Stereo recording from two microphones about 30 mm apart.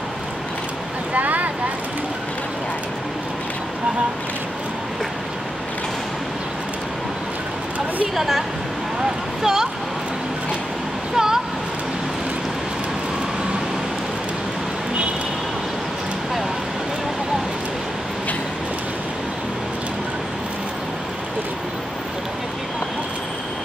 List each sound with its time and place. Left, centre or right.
1.1 s boat: right
8.2 s a woman's voice: centre
11.1 s a sound: centre